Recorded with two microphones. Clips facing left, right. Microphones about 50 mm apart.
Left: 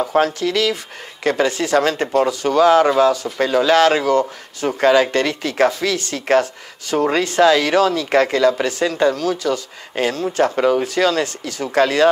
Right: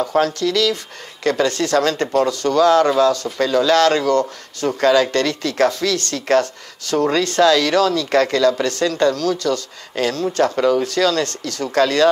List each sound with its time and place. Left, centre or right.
0.0 s speech: centre